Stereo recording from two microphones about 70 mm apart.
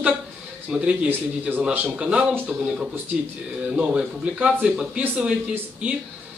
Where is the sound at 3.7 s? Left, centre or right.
Centre.